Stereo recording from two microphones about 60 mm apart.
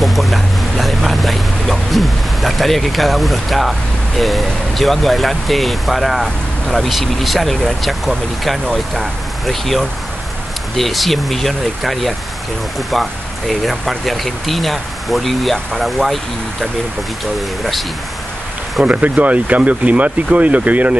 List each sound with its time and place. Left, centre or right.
0.0 s boat: centre
4.2 s speech: centre
18.8 s speech: right